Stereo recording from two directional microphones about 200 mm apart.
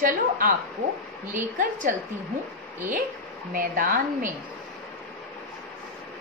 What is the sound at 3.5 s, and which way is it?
Speech, 40° right (ahead or behind).